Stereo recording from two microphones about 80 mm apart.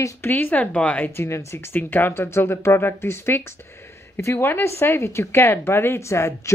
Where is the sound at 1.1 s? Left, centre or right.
Left.